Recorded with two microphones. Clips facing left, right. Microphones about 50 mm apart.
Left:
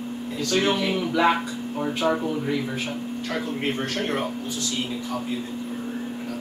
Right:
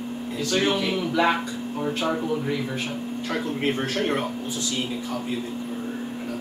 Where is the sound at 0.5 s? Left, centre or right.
Centre.